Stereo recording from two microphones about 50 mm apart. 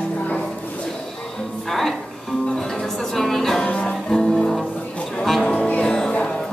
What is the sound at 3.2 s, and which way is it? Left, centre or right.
Music, centre.